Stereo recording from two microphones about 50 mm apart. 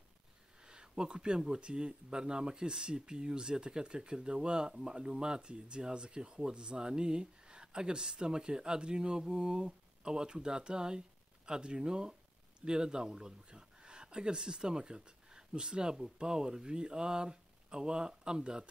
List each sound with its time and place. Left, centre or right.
0.6 s speech: centre